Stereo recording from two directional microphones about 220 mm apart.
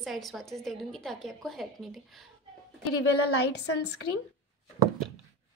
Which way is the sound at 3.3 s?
50° left (ahead or behind).